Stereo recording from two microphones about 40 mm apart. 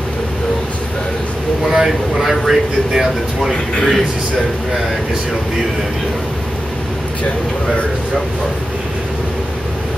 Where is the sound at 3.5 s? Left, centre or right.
Left.